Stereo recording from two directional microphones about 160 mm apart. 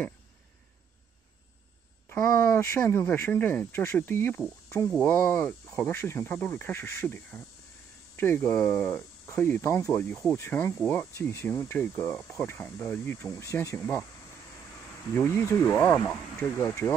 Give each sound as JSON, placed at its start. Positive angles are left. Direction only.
{"t": 2.0, "sound": "speech", "side_deg": 10}
{"t": 10.3, "sound": "speech", "side_deg": 15}
{"t": 15.1, "sound": "speech", "side_deg": 10}